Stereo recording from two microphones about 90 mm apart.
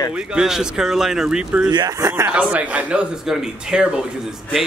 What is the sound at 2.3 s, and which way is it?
Speech, 15° right (ahead or behind).